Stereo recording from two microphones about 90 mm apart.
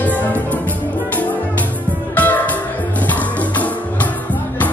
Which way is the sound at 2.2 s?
20° left (ahead or behind).